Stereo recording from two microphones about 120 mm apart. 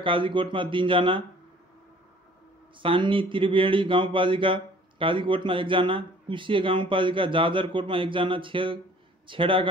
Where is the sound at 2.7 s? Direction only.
45° right (ahead or behind).